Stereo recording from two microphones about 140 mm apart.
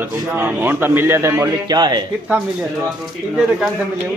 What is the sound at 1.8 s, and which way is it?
Speech, 30° right (ahead or behind).